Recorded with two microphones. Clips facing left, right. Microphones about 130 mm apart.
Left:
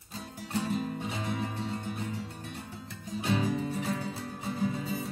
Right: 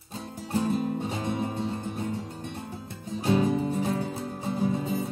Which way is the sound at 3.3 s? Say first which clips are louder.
Right 6 dB; 30° right (ahead or behind).